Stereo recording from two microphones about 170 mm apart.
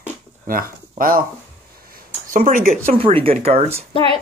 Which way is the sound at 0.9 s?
55° right (ahead or behind).